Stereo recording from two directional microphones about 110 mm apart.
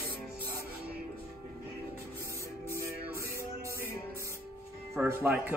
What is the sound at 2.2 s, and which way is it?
Music, 25° right (ahead or behind).